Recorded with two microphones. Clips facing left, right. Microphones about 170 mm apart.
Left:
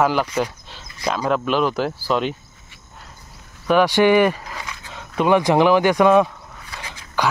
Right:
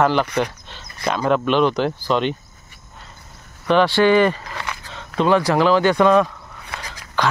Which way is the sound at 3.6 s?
10° left (ahead or behind).